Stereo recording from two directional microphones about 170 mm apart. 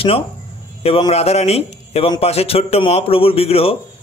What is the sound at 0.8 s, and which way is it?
Speech, 35° left (ahead or behind).